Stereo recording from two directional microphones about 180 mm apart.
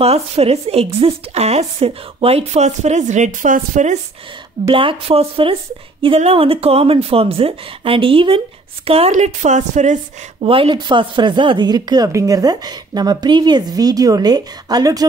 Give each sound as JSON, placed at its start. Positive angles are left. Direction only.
{"t": 0.0, "sound": "speech", "side_deg": -35}
{"t": 4.6, "sound": "speech", "side_deg": -30}
{"t": 10.4, "sound": "a woman's voice", "side_deg": -30}